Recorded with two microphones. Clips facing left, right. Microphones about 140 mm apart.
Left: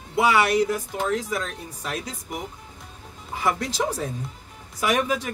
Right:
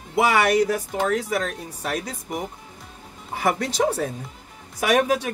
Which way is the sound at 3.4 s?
60° right (ahead or behind).